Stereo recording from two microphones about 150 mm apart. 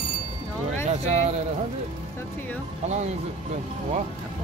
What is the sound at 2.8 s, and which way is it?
Speech, 50° right (ahead or behind).